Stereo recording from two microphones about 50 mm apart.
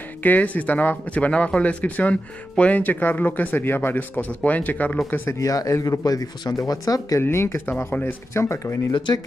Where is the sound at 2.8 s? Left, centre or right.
Left.